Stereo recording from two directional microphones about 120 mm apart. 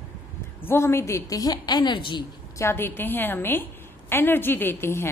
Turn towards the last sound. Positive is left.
turn(degrees=20)  # may be behind; listen again after turning